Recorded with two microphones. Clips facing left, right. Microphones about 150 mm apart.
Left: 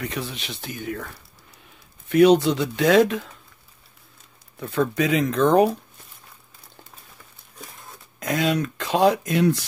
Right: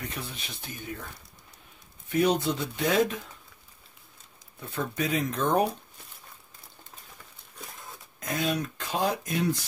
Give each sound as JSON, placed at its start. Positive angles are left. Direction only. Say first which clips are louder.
{"t": 0.0, "sound": "speech", "louder": "left 8 dB", "side_deg": 90}
{"t": 2.0, "sound": "speech", "louder": "left 9 dB", "side_deg": 85}
{"t": 4.6, "sound": "speech", "louder": "left 9 dB", "side_deg": 90}
{"t": 8.2, "sound": "speech", "louder": "left 7 dB", "side_deg": 90}